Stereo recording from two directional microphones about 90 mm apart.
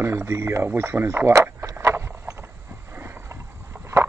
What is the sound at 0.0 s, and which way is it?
Speech, 25° right (ahead or behind).